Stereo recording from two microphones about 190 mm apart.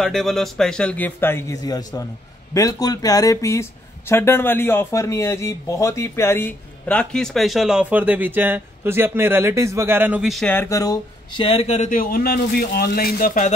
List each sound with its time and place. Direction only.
0.0 s a man's voice: centre (ahead or behind); by 13.5 s 45° left (ahead or behind)